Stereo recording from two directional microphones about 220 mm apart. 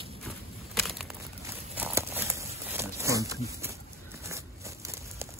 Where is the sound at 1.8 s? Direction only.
10° right (ahead or behind).